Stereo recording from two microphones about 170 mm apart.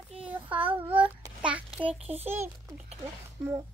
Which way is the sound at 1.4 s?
5° right (ahead or behind).